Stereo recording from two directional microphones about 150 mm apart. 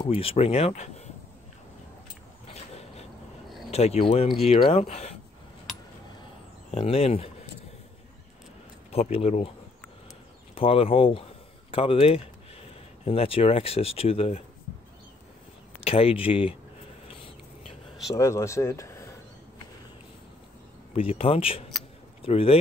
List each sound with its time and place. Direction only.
0.0 s speech: 40° left (ahead or behind)
2.4 s vehicle: 45° left (ahead or behind)
3.7 s speech: 45° left (ahead or behind)
6.7 s speech: 40° left (ahead or behind)
8.9 s speech: 40° left (ahead or behind)
10.5 s speech: 40° left (ahead or behind)
15.8 s speech: 40° left (ahead or behind)
18.1 s speech: 20° left (ahead or behind)
20.9 s speech: 40° left (ahead or behind)